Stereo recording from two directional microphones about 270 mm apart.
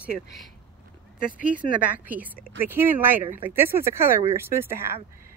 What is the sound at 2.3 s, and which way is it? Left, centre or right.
Speech, right.